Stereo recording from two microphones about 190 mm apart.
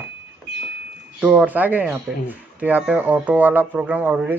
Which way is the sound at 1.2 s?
5° right (ahead or behind).